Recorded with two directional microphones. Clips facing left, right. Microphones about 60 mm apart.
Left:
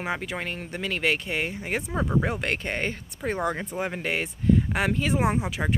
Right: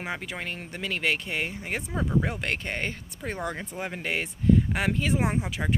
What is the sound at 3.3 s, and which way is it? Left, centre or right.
Speech, left.